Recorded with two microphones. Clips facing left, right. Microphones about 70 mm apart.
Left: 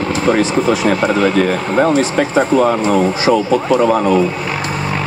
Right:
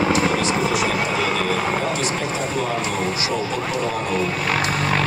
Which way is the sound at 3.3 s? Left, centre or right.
Left.